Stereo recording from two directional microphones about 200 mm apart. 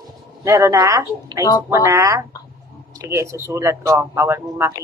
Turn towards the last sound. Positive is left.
turn(degrees=-15)  # may be behind; listen again after turning